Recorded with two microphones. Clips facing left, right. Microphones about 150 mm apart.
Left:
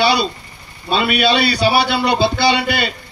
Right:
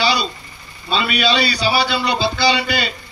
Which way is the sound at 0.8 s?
55° left (ahead or behind).